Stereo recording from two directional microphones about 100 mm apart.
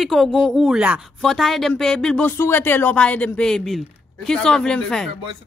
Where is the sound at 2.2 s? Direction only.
20° left (ahead or behind).